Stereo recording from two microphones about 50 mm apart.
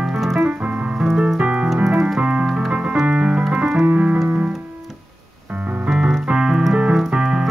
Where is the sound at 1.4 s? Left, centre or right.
Right.